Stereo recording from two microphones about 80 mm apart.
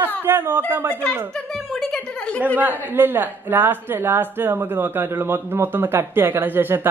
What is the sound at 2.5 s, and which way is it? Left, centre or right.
A woman's voice, right.